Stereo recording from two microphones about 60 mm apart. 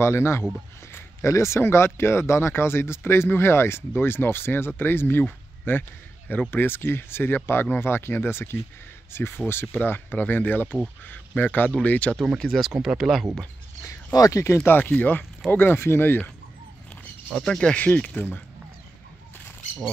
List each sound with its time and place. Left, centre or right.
0.0 s a man's voice: left
12.4 s speech: centre
13.8 s speech: left
14.7 s speech: left
17.3 s speech: centre
17.7 s speech: left